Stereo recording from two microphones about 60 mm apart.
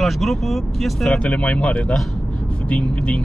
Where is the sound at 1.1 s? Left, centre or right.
Centre.